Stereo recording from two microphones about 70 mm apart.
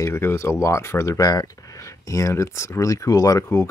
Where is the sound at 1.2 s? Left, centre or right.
Left.